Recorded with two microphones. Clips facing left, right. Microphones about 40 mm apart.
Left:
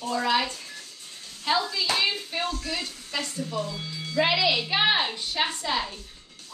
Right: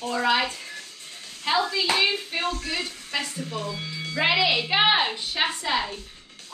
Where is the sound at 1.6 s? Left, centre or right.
Right.